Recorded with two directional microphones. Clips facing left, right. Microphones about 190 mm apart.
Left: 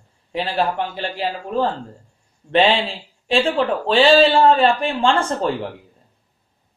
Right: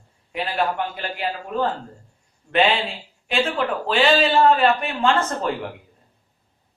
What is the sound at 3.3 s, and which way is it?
A man's voice, 30° left (ahead or behind).